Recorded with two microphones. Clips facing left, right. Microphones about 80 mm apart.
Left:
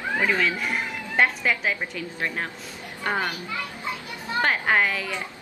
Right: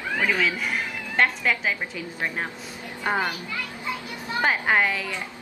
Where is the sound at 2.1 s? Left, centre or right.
Centre.